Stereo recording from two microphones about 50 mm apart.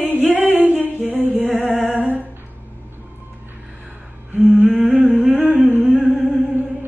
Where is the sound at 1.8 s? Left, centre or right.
Right.